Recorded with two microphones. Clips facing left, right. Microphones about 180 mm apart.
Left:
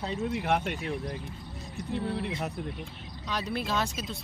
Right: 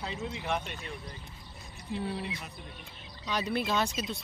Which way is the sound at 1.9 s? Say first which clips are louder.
Left 3 dB; 60° left (ahead or behind).